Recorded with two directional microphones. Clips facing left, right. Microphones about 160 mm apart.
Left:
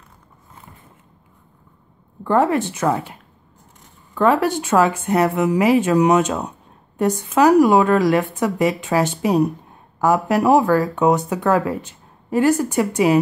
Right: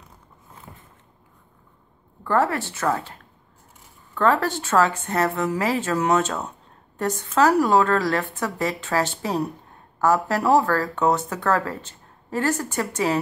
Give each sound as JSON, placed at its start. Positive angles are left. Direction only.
{"t": 2.2, "sound": "speech", "side_deg": 15}